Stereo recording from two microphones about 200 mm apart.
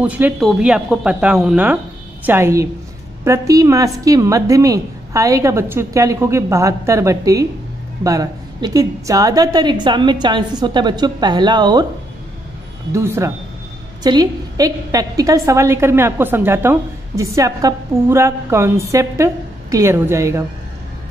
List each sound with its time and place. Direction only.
0.0 s a woman's voice: 5° right (ahead or behind)
12.9 s a woman's voice: 15° right (ahead or behind)